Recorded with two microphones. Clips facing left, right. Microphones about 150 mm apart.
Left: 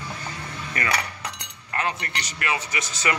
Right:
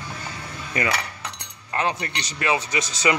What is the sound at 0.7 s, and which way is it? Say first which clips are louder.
A man's voice: right 2 dB; 20° right (ahead or behind).